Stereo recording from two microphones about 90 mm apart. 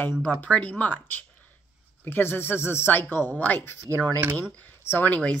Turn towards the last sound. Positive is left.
turn(degrees=20)  # may be behind; listen again after turning